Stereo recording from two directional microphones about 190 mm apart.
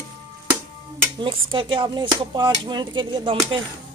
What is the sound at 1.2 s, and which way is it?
Speech, 25° right (ahead or behind).